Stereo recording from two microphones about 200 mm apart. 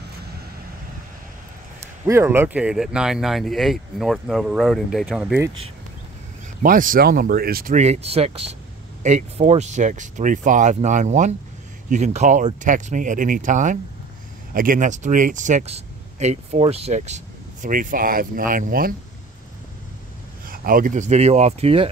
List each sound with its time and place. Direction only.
2.0 s speech: 15° right (ahead or behind)
6.6 s speech: 45° right (ahead or behind)
20.4 s speech: 45° right (ahead or behind)